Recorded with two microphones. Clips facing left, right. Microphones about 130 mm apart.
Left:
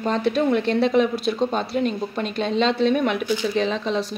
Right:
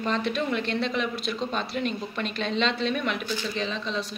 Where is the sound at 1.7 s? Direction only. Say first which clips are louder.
Left 6 dB; 30° left (ahead or behind).